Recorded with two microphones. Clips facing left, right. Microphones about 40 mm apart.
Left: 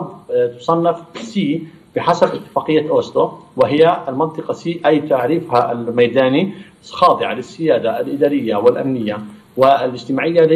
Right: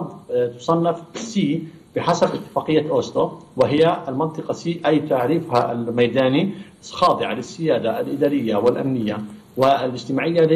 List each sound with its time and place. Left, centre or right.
0.3 s speech: centre